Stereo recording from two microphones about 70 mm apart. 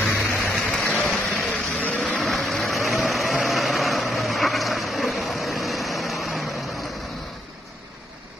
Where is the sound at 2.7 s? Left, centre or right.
Centre.